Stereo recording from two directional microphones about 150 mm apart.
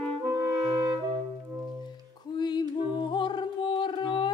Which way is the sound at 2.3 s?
30° left (ahead or behind).